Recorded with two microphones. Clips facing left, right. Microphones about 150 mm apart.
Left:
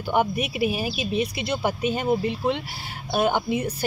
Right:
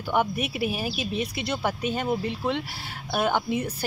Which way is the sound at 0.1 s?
5° left (ahead or behind).